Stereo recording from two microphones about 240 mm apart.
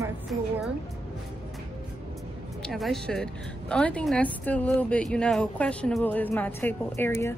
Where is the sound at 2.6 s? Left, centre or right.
Centre.